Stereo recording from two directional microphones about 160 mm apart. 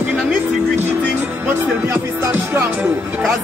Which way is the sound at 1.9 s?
15° right (ahead or behind).